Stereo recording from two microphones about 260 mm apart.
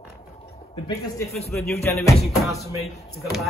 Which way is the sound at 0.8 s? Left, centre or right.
Centre.